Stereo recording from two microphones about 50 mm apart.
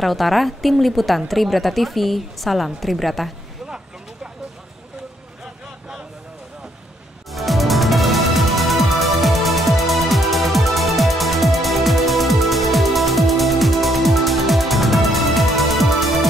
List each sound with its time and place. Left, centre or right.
0.0 s a woman's voice: centre
3.6 s vehicle: centre
7.3 s music: centre